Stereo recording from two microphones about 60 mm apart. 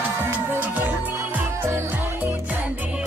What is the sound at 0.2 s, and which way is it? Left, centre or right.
Music, right.